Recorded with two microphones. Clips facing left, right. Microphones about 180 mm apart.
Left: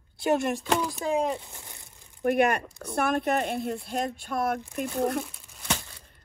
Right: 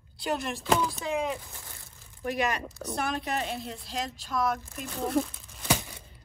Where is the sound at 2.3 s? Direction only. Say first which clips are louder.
Left 6 dB; 55° left (ahead or behind).